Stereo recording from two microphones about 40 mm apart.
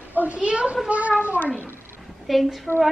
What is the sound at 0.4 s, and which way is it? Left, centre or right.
Speech, right.